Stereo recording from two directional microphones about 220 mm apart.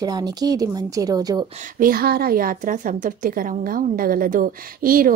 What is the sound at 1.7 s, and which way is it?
A woman's voice, 40° right (ahead or behind).